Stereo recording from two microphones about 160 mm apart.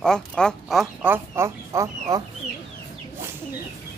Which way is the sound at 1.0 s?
15° right (ahead or behind).